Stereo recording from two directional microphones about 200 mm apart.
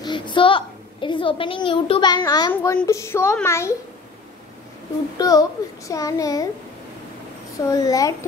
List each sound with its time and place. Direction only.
0.0 s a child's voice: 25° left (ahead or behind)
5.2 s a child's voice: 20° left (ahead or behind)
7.7 s a child's voice: 20° left (ahead or behind)